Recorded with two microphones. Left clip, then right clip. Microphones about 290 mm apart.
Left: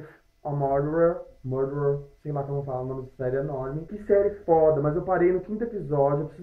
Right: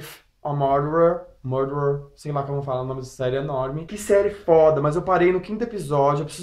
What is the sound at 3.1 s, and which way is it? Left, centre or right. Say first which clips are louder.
Speech: right 3 dB; centre.